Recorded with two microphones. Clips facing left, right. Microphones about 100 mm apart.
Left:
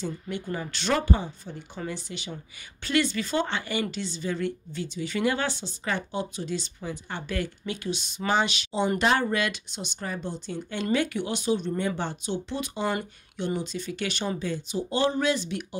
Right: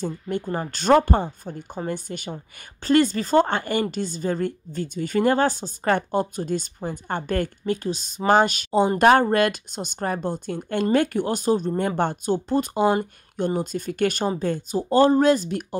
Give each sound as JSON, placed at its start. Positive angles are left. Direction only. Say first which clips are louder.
{"t": 0.0, "sound": "speech", "louder": "right 5 dB", "side_deg": -45}